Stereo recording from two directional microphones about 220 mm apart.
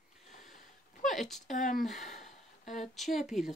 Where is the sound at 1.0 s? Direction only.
Centre (ahead or behind).